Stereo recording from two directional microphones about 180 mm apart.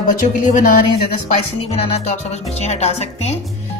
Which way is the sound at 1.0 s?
35° left (ahead or behind).